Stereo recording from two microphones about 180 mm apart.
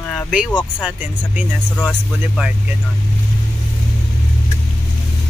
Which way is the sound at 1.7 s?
5° left (ahead or behind).